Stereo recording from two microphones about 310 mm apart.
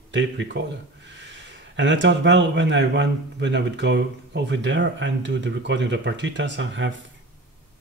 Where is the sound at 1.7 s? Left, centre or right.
Right.